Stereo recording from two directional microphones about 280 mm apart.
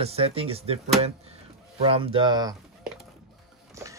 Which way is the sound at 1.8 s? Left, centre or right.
Centre.